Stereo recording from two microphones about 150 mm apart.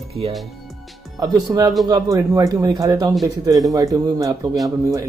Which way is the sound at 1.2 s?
25° right (ahead or behind).